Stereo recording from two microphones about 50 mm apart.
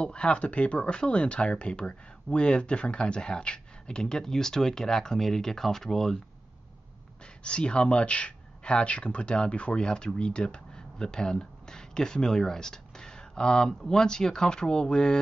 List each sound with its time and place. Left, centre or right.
0.0 s speech: centre
7.4 s speech: left